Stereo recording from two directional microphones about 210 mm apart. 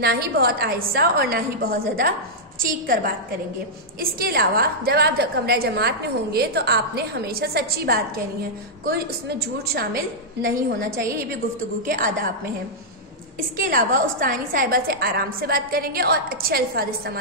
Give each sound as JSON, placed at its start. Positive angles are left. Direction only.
{"t": 0.0, "sound": "a woman's voice", "side_deg": -50}
{"t": 11.8, "sound": "a woman's voice", "side_deg": -40}
{"t": 13.6, "sound": "a woman's voice", "side_deg": -40}